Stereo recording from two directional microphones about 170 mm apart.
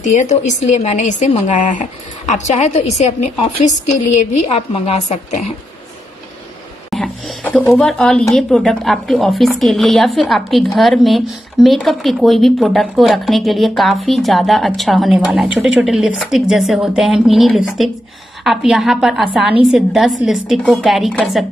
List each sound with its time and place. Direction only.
0.0 s a woman's voice: 45° left (ahead or behind)
6.9 s speech: centre (ahead or behind)